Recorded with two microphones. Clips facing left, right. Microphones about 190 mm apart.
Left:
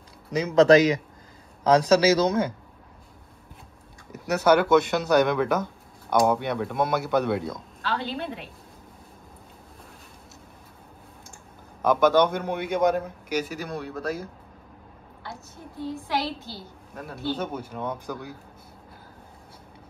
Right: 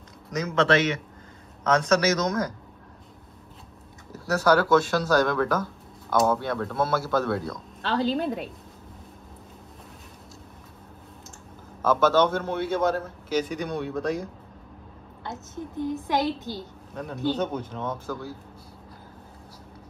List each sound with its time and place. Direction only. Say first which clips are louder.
0.6 s speech: left 6 dB; 40° left (ahead or behind)
4.1 s speech: left 1 dB; 20° left (ahead or behind)
8.0 s a woman's voice: right 7 dB; 40° right (ahead or behind)
11.8 s a man's voice: left 1 dB; 15° left (ahead or behind)
15.2 s a woman's voice: right 6 dB; 20° right (ahead or behind)
17.3 s a man's voice: right 2 dB; 10° left (ahead or behind)